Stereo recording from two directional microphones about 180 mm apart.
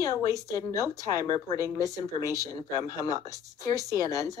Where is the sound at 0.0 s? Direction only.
20° left (ahead or behind).